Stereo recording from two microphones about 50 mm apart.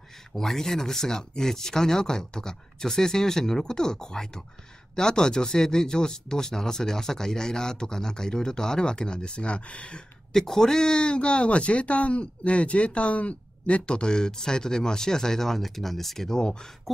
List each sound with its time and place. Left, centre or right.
0.3 s speech: centre
10.3 s speech: centre
16.9 s a sound: centre